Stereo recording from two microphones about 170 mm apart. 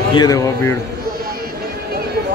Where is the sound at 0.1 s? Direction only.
20° left (ahead or behind).